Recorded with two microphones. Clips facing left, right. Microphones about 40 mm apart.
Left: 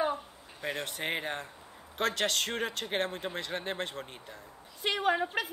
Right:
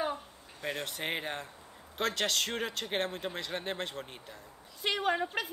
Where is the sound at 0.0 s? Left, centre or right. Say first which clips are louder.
Left 3 dB; centre.